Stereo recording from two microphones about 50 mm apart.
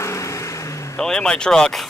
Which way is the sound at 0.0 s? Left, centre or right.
Left.